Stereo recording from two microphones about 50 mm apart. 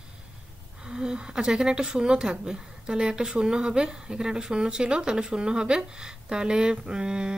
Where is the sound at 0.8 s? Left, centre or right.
Centre.